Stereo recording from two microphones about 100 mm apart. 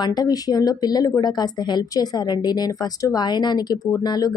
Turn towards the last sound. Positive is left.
turn(degrees=40)  # may be behind; listen again after turning